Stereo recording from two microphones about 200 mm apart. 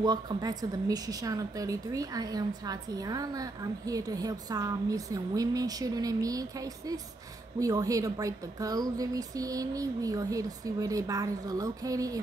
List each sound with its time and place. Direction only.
0.0 s a woman's voice: 20° right (ahead or behind)